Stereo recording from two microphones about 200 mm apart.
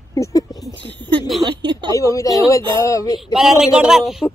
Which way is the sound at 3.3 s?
5° right (ahead or behind).